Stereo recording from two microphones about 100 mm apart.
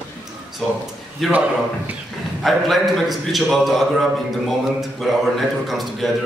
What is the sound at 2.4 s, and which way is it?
A man's voice, centre (ahead or behind).